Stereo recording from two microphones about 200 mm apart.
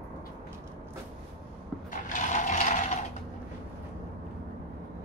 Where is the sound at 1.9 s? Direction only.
40° left (ahead or behind).